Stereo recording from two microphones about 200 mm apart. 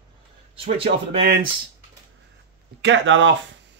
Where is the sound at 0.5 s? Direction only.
30° right (ahead or behind).